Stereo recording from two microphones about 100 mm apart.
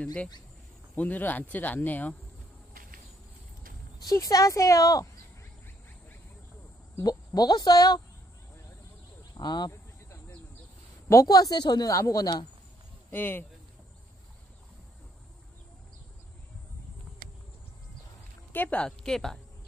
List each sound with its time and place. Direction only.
0.0 s speech: 10° left (ahead or behind)
4.0 s speech: 35° left (ahead or behind)
7.0 s speech: 40° left (ahead or behind)
9.3 s speech: 45° left (ahead or behind)
9.7 s a sound: 30° left (ahead or behind)
11.1 s speech: 35° left (ahead or behind)
13.1 s speech: 20° left (ahead or behind)
18.5 s speech: 15° left (ahead or behind)
18.9 s a woman's voice: 5° left (ahead or behind)